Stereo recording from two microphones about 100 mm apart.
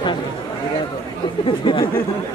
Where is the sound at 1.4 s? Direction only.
60° left (ahead or behind).